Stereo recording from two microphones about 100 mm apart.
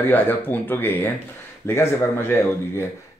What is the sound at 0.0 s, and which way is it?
Speech, 20° left (ahead or behind).